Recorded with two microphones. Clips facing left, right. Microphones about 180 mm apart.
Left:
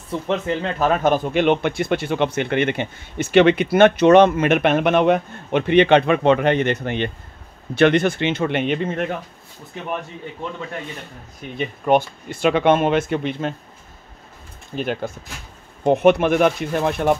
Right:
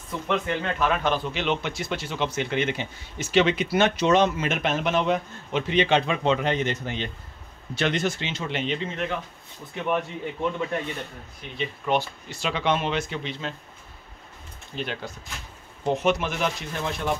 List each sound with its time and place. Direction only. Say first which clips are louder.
0.3 s a man's voice: left 3 dB; 35° left (ahead or behind); by 9.1 s 50° left (ahead or behind)
11.5 s speech: left 7 dB; 50° left (ahead or behind)
14.8 s speech: left 8 dB; 50° left (ahead or behind)
15.8 s a man's voice: left 9 dB; 60° left (ahead or behind)